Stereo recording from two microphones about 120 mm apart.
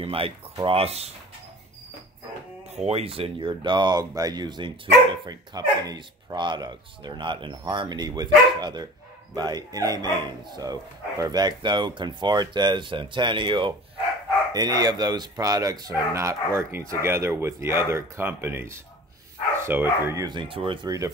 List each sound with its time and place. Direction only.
0.0 s speech: 50° right (ahead or behind)
2.7 s speech: 60° right (ahead or behind); by 20.2 s 20° right (ahead or behind)
20.2 s speech: 45° right (ahead or behind)